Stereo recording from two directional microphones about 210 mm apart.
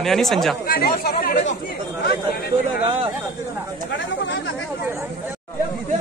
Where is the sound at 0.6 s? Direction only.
45° left (ahead or behind).